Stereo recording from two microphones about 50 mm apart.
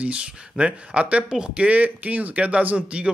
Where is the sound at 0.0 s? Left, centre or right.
Right.